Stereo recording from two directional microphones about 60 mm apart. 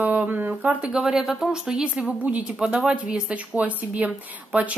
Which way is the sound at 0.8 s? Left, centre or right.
Centre.